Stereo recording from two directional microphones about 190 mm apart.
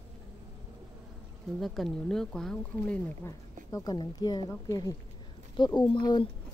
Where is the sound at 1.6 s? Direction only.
Centre (ahead or behind).